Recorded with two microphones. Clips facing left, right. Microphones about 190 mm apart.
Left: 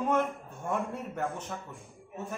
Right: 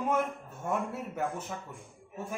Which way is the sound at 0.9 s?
5° right (ahead or behind).